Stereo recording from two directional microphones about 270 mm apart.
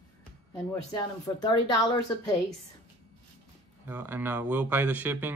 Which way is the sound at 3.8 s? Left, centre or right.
Centre.